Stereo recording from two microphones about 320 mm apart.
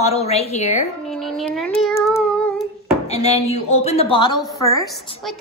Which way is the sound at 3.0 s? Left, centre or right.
Centre.